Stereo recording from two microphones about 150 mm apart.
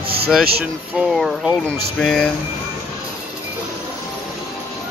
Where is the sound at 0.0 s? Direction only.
90° right.